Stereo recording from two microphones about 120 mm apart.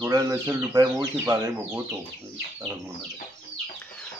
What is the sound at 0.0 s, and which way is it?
Speech, 25° right (ahead or behind).